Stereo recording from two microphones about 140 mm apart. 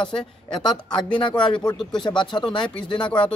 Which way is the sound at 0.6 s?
35° left (ahead or behind).